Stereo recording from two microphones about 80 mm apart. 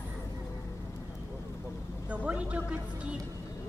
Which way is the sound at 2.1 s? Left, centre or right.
Centre.